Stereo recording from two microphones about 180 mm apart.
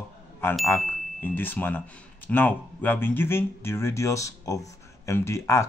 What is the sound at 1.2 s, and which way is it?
Speech, 10° left (ahead or behind).